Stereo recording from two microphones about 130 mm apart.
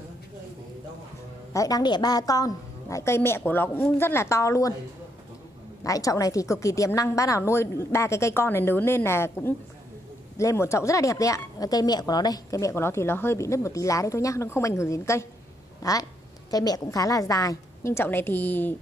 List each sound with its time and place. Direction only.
1.5 s speech: 25° left (ahead or behind)
5.9 s speech: 25° left (ahead or behind)